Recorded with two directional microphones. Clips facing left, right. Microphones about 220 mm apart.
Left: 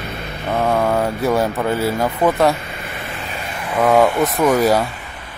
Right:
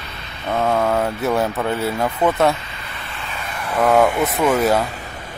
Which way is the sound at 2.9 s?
40° left (ahead or behind).